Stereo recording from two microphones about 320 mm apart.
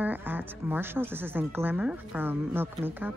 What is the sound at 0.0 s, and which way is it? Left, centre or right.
Speech, centre.